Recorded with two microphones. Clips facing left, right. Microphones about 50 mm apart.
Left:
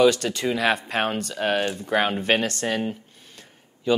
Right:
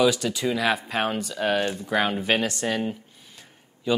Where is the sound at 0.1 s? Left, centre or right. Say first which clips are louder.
Left 1 dB; left.